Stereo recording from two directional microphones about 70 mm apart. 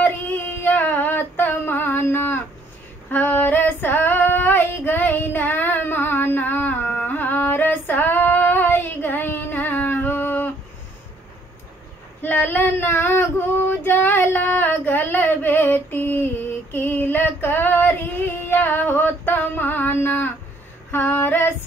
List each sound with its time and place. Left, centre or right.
0.6 s female singing: left
12.2 s child singing: left
20.9 s female singing: left